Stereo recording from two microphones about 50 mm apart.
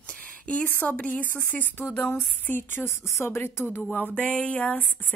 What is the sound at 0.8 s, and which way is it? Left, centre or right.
A woman's voice, left.